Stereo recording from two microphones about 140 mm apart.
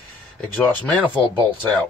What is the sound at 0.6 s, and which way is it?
Mantra, 10° left (ahead or behind).